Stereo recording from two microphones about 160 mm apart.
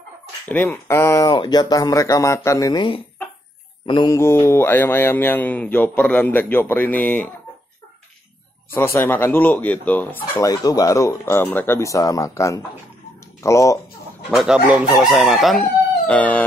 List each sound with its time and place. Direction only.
0.5 s speech: 15° left (ahead or behind)
3.8 s mantra: 25° left (ahead or behind); by 7.2 s 10° left (ahead or behind)
8.7 s mantra: 15° left (ahead or behind)
10.5 s speech: 20° left (ahead or behind)
14.3 s chicken: 5° right (ahead or behind)
16.1 s mantra: 10° left (ahead or behind)